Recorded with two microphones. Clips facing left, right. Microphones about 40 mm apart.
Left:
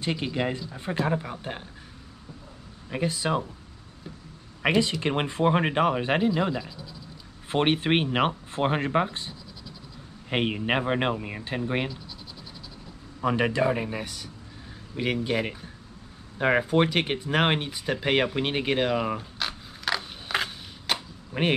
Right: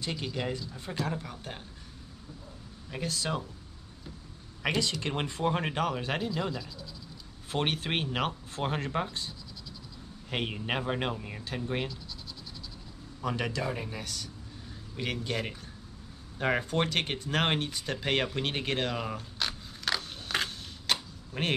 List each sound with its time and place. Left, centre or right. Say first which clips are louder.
0.0 s speech: left 6 dB; left
2.9 s speech: left 7 dB; left
4.6 s speech: left 7 dB; left
7.4 s speech: left 8 dB; left
10.3 s speech: left 7 dB; left
13.2 s speech: left 8 dB; left
18.0 s a sound: left 5 dB; centre
21.3 s speech: left 6 dB; centre